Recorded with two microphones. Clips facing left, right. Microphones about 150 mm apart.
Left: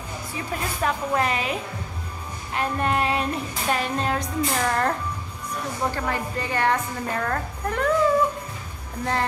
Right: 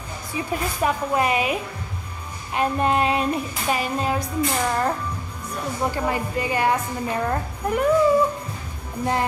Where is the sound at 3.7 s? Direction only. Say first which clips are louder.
Right 1 dB; 5° right (ahead or behind).